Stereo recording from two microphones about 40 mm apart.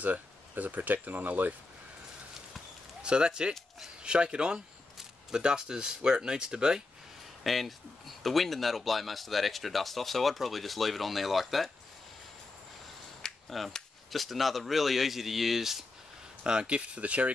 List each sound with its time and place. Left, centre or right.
0.0 s speech: right
3.0 s speech: right
7.4 s speech: centre
13.2 s cap gun: centre
14.1 s speech: centre
16.6 s speech: right